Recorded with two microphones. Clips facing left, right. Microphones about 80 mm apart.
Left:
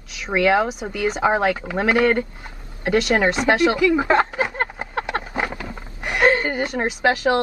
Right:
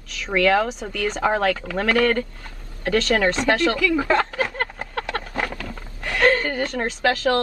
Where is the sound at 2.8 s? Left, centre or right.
Centre.